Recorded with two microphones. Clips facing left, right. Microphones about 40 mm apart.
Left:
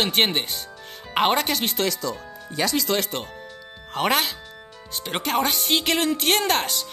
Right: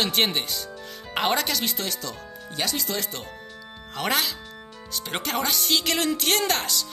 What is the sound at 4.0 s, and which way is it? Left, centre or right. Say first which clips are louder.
Speech: left 3 dB; left.